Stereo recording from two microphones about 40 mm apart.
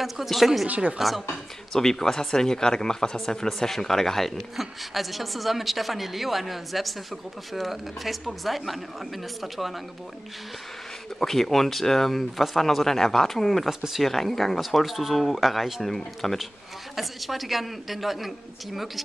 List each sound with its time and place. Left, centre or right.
0.0 s a woman's voice: centre
0.7 s speech: right
0.9 s a woman's voice: centre
1.7 s speech: centre
3.4 s speech: centre
4.6 s a woman's voice: centre
11.1 s speech: centre
13.7 s speech: centre
14.0 s a woman's voice: centre